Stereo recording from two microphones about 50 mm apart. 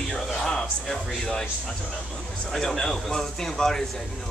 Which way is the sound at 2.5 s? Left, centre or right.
Centre.